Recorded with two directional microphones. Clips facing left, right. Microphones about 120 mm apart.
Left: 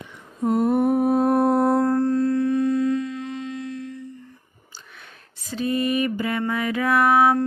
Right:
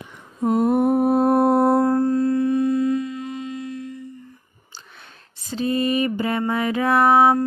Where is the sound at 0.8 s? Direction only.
35° right (ahead or behind).